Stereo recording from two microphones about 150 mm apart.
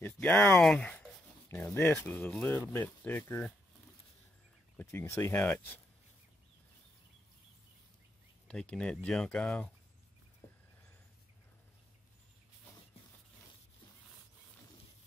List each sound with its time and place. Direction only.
0.0 s speech: 10° left (ahead or behind)
4.7 s speech: 15° left (ahead or behind)
8.5 s speech: 5° left (ahead or behind)